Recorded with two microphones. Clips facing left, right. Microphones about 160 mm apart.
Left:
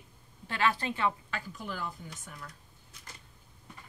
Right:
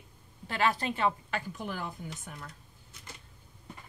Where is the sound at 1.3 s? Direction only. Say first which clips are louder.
Right 3 dB; 55° right (ahead or behind).